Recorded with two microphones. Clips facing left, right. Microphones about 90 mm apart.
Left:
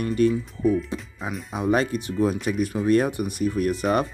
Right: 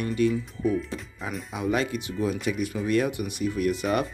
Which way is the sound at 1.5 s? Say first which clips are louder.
Left 4 dB; 35° left (ahead or behind).